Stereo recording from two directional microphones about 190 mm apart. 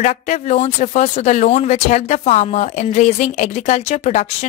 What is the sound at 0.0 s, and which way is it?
Speech, 35° left (ahead or behind).